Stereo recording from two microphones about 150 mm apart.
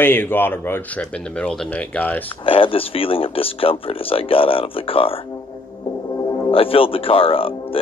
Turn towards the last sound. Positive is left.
turn(degrees=40)  # may be behind; listen again after turning